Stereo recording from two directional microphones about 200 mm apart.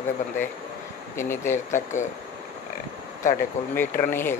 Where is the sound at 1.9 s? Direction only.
40° left (ahead or behind).